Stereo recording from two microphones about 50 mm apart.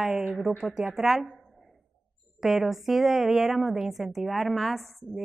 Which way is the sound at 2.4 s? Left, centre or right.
Centre.